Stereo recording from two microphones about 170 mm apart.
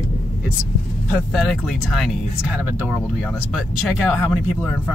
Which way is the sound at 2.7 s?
10° right (ahead or behind).